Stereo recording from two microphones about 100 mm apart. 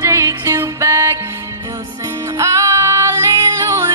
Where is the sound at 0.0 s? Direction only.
35° right (ahead or behind).